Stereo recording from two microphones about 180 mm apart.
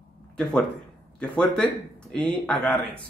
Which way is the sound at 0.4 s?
5° left (ahead or behind).